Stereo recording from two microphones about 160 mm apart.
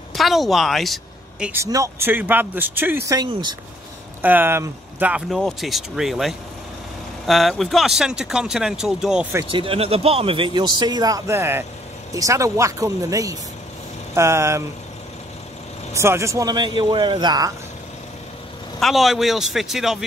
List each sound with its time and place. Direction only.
0.1 s a woman's voice: centre (ahead or behind)
1.5 s speech: 20° right (ahead or behind)
3.2 s a man's voice: 25° right (ahead or behind)
4.2 s speech: 10° right (ahead or behind)
9.5 s a man's voice: 35° right (ahead or behind); by 14.6 s 15° right (ahead or behind)
15.9 s a man's voice: 15° right (ahead or behind)
18.8 s speech: centre (ahead or behind)